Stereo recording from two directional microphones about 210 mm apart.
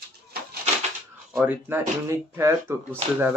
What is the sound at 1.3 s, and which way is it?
Speech, 10° right (ahead or behind).